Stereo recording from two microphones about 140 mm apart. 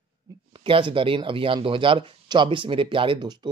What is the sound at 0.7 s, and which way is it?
Speech, 40° right (ahead or behind).